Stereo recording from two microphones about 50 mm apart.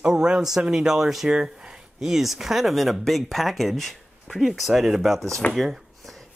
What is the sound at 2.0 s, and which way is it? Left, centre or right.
Speech, centre.